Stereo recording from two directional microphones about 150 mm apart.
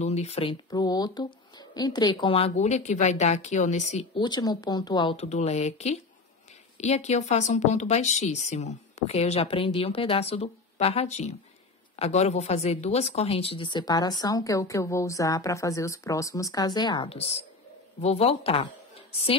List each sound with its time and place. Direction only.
0.0 s speech: 45° left (ahead or behind)
0.7 s speech: 25° left (ahead or behind); by 4.0 s 50° left (ahead or behind)
4.1 s speech: 30° left (ahead or behind)
5.1 s speech: 45° left (ahead or behind)